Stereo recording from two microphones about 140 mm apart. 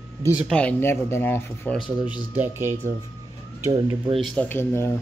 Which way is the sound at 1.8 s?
35° left (ahead or behind).